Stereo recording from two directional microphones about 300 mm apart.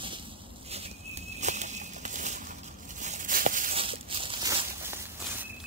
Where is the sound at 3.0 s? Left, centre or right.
Right; by 5.4 s centre.